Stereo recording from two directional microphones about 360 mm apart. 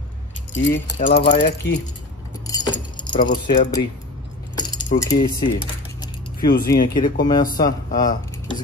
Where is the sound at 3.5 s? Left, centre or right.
Centre.